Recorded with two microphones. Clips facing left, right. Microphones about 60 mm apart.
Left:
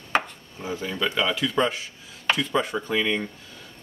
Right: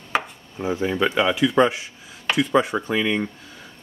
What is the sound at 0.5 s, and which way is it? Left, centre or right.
Speech, right.